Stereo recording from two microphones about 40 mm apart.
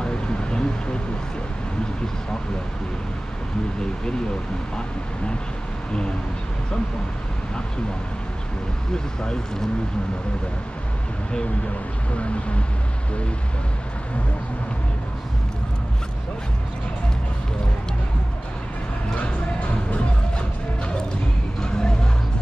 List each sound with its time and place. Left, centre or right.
0.0 s a sound: left
8.9 s speech: centre
12.2 s speech: left
19.1 s music: left